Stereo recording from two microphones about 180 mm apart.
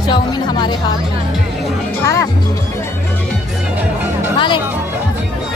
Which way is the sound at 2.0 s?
15° left (ahead or behind).